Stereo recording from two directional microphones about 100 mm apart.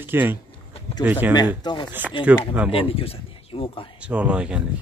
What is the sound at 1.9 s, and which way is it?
Speech, 15° right (ahead or behind).